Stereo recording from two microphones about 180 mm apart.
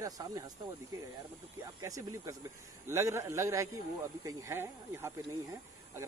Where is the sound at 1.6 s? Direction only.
20° right (ahead or behind).